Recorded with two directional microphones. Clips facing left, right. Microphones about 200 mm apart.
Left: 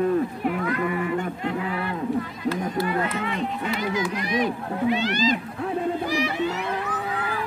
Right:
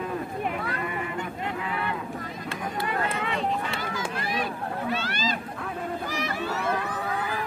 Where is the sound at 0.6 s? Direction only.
30° right (ahead or behind).